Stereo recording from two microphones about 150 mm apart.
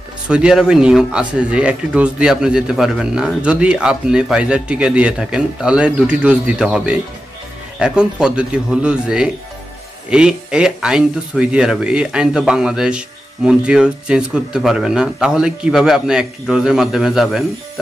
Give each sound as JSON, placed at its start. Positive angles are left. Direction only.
{"t": 0.3, "sound": "speech", "side_deg": -5}